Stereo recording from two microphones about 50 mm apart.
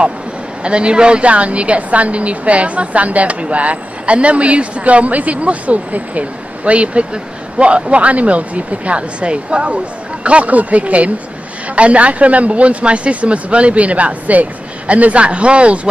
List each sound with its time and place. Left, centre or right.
0.7 s a woman's voice: right